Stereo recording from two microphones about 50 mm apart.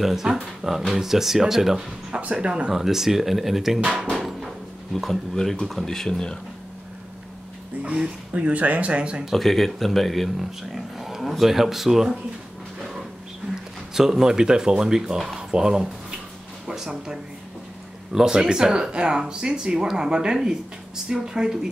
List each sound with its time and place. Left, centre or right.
0.0 s speech: centre
2.0 s speech: right
2.7 s speech: centre
4.1 s a sound: centre
4.9 s speech: centre
7.8 s speech: right
9.2 s speech: centre
13.9 s speech: centre